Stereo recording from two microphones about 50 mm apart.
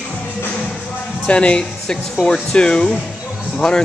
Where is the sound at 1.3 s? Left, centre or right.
Left.